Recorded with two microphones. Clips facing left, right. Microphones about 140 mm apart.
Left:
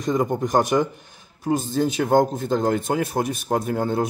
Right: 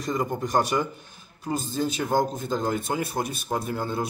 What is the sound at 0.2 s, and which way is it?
Speech, 50° left (ahead or behind).